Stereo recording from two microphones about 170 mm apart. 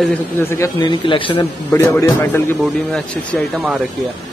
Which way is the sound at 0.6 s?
25° left (ahead or behind).